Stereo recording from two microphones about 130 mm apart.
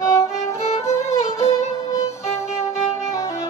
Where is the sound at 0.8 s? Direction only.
20° left (ahead or behind).